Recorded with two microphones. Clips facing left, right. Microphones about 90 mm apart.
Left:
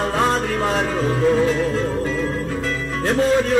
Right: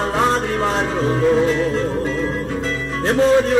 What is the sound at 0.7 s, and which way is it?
Music, 20° right (ahead or behind).